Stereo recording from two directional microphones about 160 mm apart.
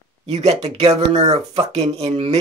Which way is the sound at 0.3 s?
40° right (ahead or behind).